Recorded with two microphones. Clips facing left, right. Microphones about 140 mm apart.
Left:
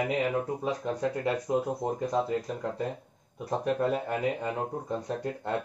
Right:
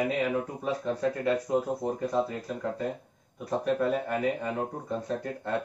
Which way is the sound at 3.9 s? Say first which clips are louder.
Right 1 dB; 20° left (ahead or behind).